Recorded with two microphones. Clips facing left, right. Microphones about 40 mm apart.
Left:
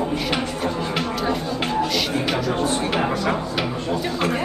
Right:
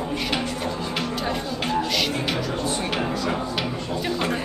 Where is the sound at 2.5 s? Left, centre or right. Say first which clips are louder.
Left 4 dB; left.